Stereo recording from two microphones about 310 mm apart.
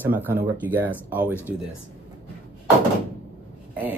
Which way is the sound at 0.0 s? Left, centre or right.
Centre.